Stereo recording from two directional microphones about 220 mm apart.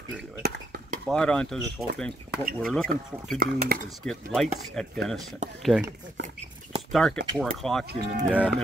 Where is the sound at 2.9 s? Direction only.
40° right (ahead or behind).